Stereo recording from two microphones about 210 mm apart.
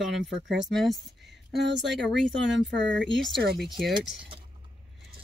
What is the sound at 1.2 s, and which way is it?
Speech, 55° right (ahead or behind).